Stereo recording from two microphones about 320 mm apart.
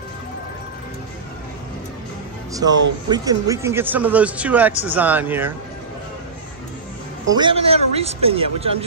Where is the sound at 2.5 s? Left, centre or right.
Centre.